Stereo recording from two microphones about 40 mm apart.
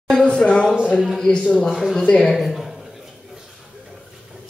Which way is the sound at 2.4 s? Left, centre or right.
Centre.